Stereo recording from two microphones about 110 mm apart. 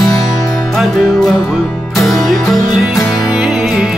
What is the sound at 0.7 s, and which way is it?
Music, centre (ahead or behind).